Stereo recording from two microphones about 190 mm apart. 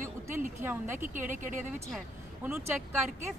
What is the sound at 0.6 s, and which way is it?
Speech, 10° right (ahead or behind).